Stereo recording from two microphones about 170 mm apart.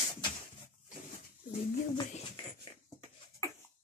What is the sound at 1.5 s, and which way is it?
Speech, 35° left (ahead or behind).